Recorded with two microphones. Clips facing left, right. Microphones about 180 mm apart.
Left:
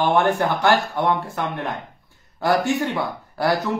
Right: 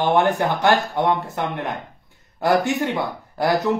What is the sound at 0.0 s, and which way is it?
A man's voice, 20° right (ahead or behind).